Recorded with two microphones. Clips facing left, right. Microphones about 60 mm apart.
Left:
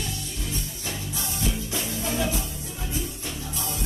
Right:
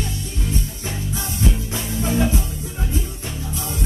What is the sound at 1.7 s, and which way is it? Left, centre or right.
Music, right.